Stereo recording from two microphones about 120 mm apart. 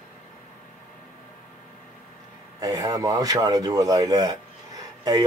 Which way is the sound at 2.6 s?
35° right (ahead or behind).